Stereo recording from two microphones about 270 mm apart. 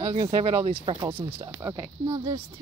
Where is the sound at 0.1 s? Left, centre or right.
Centre.